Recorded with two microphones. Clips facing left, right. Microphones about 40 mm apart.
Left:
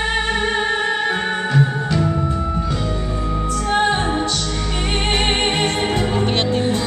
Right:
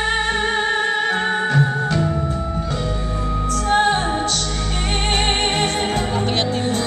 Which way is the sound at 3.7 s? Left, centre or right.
Centre.